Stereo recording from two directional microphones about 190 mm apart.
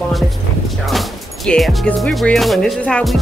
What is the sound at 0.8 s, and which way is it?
Speech, centre (ahead or behind).